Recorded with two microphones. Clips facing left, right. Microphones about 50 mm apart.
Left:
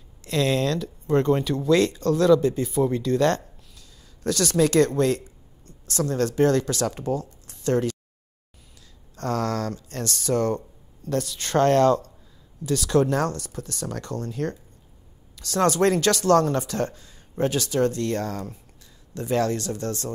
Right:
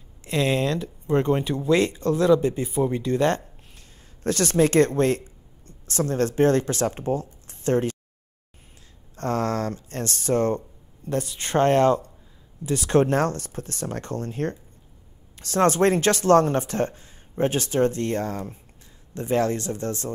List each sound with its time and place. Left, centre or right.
0.2 s speech: right
4.2 s speech: right
7.4 s a sound: right
9.1 s speech: right